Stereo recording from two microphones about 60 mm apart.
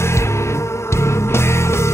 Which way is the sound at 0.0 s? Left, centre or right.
Left.